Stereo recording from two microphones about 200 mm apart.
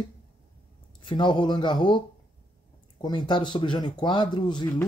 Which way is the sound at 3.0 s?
25° left (ahead or behind).